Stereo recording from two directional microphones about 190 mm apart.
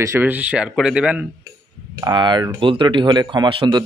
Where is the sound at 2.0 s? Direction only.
25° right (ahead or behind).